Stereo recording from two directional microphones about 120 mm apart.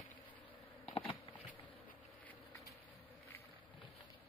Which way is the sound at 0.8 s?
50° left (ahead or behind).